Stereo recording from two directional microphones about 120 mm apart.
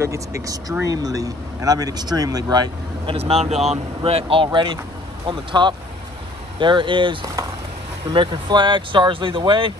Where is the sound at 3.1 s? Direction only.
60° right (ahead or behind).